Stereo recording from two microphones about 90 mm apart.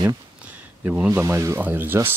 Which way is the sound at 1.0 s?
35° right (ahead or behind).